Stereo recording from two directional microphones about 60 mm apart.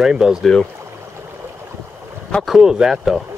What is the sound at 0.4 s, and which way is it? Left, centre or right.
Speech, centre.